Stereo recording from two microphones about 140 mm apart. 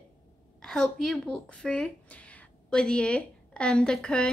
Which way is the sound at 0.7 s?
5° left (ahead or behind).